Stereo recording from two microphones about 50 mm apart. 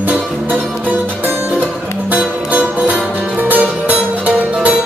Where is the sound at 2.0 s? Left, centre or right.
Right.